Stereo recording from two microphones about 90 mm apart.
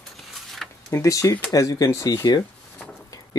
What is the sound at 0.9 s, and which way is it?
Speech, 35° left (ahead or behind).